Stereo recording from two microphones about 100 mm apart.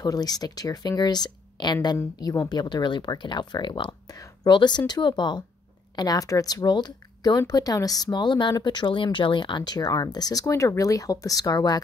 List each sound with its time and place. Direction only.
0.0 s speech: 40° left (ahead or behind)